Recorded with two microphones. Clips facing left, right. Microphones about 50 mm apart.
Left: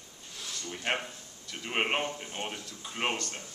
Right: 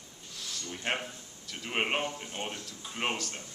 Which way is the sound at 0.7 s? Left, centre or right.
Centre.